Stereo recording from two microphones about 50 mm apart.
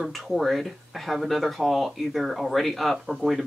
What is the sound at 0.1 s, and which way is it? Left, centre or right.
Speech, centre.